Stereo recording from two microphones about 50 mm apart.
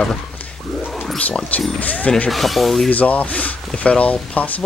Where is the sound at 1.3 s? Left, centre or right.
Left.